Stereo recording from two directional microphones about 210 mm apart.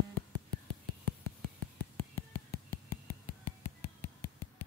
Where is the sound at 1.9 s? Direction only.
15° left (ahead or behind).